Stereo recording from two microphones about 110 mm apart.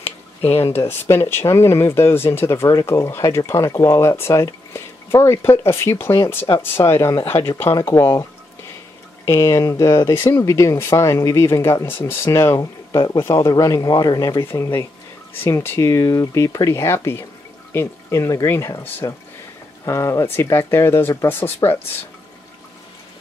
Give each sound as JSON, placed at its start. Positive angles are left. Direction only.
{"t": 0.8, "sound": "speech", "side_deg": 25}
{"t": 12.9, "sound": "speech", "side_deg": 40}
{"t": 13.2, "sound": "speech", "side_deg": 25}
{"t": 14.4, "sound": "speech", "side_deg": 20}
{"t": 21.6, "sound": "speech", "side_deg": 40}